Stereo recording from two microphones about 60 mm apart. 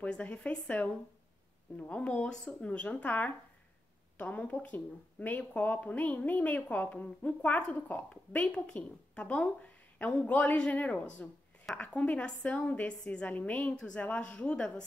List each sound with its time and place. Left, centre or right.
0.0 s a woman's voice: left
13.7 s a woman's voice: centre